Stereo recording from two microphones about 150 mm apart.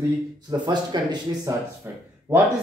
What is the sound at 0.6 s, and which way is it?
Speech, 30° right (ahead or behind).